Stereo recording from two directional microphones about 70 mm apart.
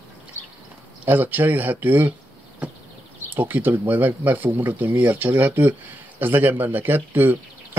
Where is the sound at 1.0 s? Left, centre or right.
Right.